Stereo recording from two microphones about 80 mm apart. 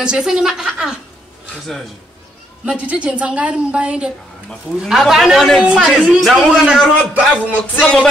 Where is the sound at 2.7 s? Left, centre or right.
Centre.